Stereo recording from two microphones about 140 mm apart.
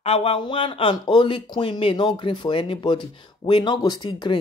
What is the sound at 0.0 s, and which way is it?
A woman's voice, 45° left (ahead or behind).